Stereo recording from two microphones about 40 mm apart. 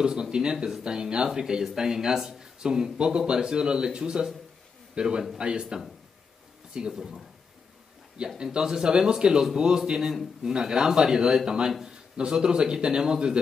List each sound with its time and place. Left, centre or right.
0.0 s a man's voice: centre
6.9 s speech: centre
8.4 s speech: centre